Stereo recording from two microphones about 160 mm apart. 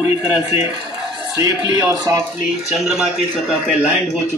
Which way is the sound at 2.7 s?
5° right (ahead or behind).